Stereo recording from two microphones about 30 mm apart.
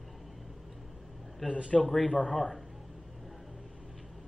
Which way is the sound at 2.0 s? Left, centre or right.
Left.